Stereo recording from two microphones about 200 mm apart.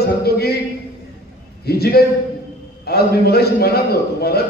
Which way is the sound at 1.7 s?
50° left (ahead or behind).